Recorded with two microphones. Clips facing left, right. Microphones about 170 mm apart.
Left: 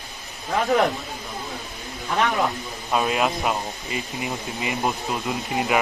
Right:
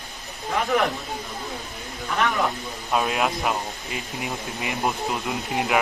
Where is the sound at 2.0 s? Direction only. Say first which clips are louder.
Left 1 dB; 20° left (ahead or behind).